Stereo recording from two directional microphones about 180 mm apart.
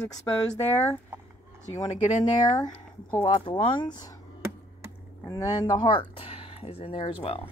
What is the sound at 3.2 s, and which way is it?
Speech, 25° left (ahead or behind).